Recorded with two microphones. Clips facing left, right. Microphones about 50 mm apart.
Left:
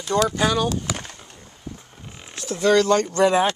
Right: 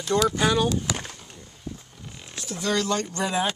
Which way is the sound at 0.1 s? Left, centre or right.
Centre.